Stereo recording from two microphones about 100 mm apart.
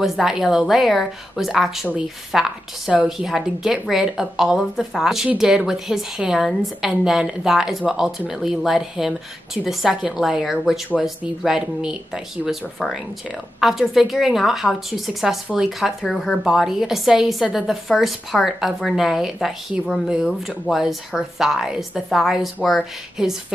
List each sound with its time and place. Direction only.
0.0 s a woman's voice: 5° right (ahead or behind)